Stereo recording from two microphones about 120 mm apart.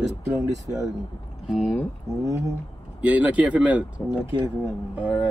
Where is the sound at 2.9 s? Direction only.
10° right (ahead or behind).